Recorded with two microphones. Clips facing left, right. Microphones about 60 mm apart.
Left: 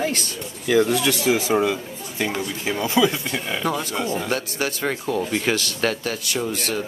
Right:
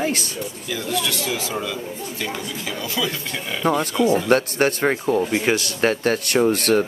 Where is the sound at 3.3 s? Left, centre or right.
Centre.